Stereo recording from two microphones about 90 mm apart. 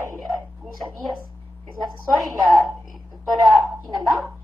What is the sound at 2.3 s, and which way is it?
Speech, centre (ahead or behind).